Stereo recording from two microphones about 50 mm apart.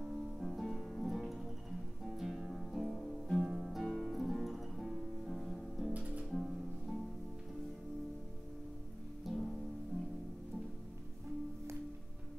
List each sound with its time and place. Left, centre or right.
0.0 s music: centre
3.3 s music: centre
5.9 s music: right
6.3 s music: centre
9.3 s music: centre